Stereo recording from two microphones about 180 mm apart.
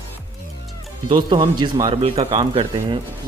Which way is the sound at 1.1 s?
25° right (ahead or behind).